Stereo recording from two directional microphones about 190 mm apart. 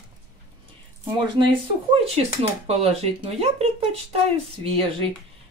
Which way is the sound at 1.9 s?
30° right (ahead or behind).